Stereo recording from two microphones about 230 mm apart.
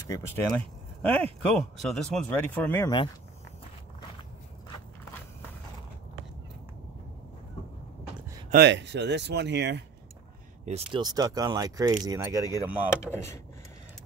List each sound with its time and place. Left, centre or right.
0.5 s speech: centre
8.5 s speech: right
10.6 s speech: right
12.9 s speech: centre